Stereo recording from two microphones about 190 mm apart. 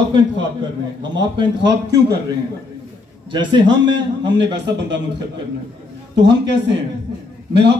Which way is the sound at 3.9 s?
70° right (ahead or behind).